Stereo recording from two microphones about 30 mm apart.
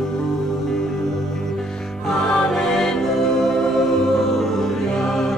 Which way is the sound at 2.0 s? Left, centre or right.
Centre.